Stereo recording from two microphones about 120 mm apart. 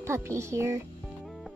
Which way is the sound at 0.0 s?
25° right (ahead or behind).